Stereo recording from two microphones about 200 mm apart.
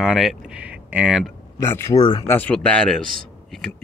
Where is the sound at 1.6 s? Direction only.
15° left (ahead or behind).